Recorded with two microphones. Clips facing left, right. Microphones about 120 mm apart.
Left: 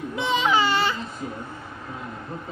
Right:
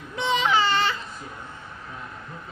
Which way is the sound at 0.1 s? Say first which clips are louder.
Even; 5° left (ahead or behind).